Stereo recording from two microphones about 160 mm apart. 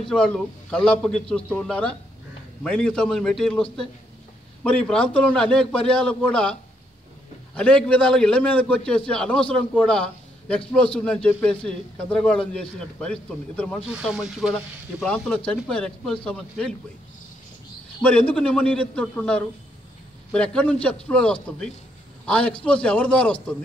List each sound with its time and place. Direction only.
0.1 s a man's voice: 5° left (ahead or behind)
4.6 s speech: 5° left (ahead or behind)
7.5 s a man's voice: 5° left (ahead or behind)
13.9 s speech: 5° right (ahead or behind)
18.0 s a man's voice: 10° left (ahead or behind)